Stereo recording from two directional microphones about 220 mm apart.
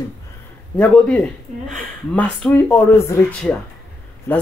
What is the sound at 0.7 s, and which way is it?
Speech, 5° left (ahead or behind).